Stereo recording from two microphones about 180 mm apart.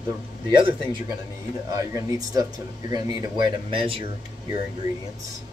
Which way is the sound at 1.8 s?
20° right (ahead or behind).